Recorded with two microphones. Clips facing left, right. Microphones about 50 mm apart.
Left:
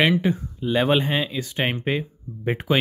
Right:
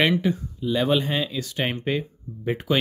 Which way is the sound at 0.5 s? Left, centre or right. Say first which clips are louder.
Left 2 dB; left.